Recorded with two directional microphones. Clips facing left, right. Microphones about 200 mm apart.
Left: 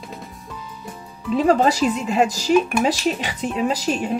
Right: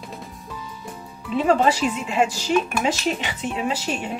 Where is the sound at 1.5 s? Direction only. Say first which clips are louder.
Left 1 dB; 40° left (ahead or behind).